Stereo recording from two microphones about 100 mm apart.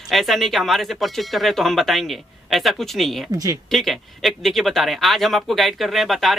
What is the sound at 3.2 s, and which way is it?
Speech, 40° right (ahead or behind).